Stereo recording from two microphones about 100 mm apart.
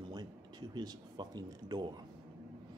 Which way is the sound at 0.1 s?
45° right (ahead or behind).